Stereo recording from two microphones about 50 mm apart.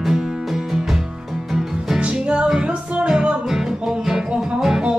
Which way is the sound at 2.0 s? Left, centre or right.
Right.